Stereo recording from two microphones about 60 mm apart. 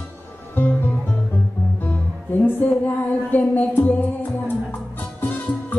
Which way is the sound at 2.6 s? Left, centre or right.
Left.